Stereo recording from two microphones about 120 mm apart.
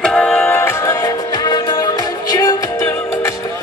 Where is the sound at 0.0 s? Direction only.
5° left (ahead or behind); by 3.3 s 25° left (ahead or behind).